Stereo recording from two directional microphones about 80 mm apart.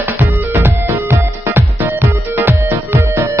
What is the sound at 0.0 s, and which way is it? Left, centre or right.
Music, right.